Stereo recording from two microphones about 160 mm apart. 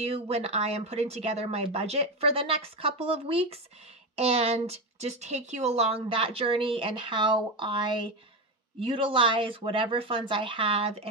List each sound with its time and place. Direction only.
0.0 s speech: 40° right (ahead or behind)